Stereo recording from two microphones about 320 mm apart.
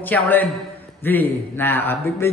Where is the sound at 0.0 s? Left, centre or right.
Centre.